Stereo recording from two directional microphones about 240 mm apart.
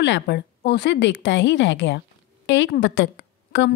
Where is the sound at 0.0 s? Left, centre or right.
Left.